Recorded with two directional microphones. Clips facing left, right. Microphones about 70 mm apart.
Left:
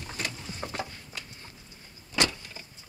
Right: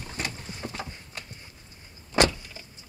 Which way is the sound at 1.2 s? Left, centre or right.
Right.